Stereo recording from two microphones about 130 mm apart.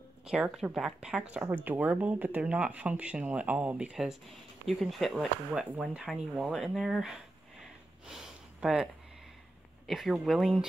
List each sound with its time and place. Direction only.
0.2 s speech: 5° right (ahead or behind)
8.1 s a sound: 5° right (ahead or behind)
9.8 s speech: centre (ahead or behind)